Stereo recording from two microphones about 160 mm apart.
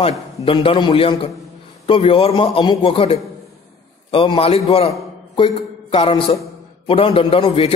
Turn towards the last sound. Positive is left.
turn(degrees=35)  # may be behind; listen again after turning